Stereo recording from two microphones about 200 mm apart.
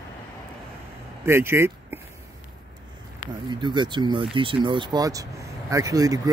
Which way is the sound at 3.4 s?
25° right (ahead or behind).